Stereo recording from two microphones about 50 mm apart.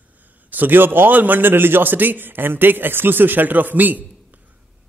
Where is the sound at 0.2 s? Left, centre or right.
Right.